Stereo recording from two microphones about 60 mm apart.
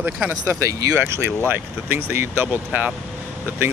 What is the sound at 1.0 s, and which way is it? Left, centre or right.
Speech, right.